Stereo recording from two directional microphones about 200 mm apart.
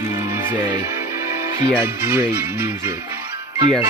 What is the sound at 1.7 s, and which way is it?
Music, 10° right (ahead or behind).